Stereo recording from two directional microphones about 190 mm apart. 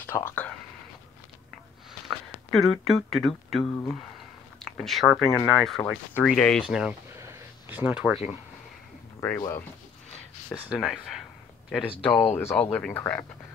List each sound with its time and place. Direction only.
0.0 s speech: 10° left (ahead or behind)
2.0 s speech: centre (ahead or behind)
9.4 s speech: 15° left (ahead or behind)
10.7 s speech: centre (ahead or behind)
12.0 s speech: 5° left (ahead or behind)